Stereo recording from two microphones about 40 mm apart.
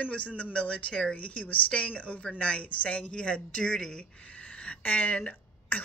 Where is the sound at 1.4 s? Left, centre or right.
Left; by 4.0 s centre.